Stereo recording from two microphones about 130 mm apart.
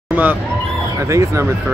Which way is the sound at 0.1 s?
15° right (ahead or behind).